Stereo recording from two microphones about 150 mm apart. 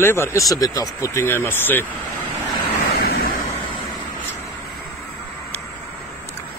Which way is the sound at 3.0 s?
90° left.